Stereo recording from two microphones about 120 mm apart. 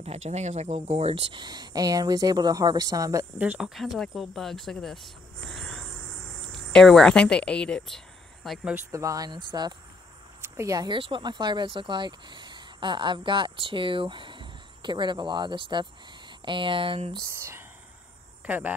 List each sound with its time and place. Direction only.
0.0 s speech: 65° right (ahead or behind)
1.4 s speech: 35° right (ahead or behind)
3.3 s speech: 10° right (ahead or behind); by 8.0 s 5° left (ahead or behind)
8.5 s speech: 10° right (ahead or behind)
8.9 s speech: 30° right (ahead or behind)
10.5 s speech: 25° right (ahead or behind)
10.9 s speech: 45° right (ahead or behind)
17.2 s speech: 20° right (ahead or behind)